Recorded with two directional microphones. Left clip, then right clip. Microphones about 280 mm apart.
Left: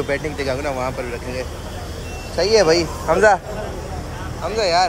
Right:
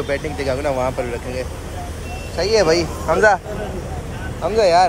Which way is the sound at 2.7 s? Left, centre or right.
Centre.